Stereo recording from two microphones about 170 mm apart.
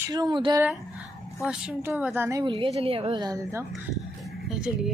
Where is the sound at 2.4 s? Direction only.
30° right (ahead or behind).